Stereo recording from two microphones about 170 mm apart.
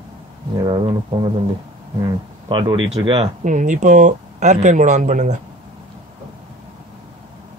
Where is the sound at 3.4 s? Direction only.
45° right (ahead or behind).